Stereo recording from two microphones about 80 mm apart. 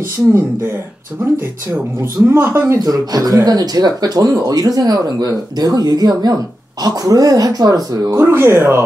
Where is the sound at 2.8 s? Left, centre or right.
Right.